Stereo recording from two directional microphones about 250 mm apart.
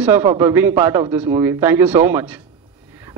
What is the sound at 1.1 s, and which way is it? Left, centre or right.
A man's voice, centre.